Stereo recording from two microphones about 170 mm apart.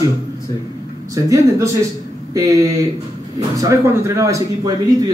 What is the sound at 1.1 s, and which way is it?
Speech, 20° right (ahead or behind).